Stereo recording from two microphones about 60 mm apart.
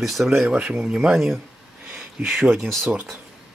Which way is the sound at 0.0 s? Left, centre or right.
Centre.